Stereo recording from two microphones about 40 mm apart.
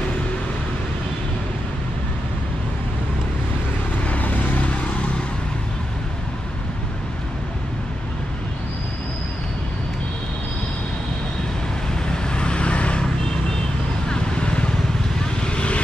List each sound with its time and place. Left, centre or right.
4.1 s vehicle: left
12.1 s vehicle: left
14.0 s vehicle: left